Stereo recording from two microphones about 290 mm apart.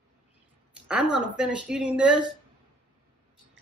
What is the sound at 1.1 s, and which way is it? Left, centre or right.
Speech, centre.